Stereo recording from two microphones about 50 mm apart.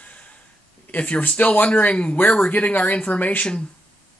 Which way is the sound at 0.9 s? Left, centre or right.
Left.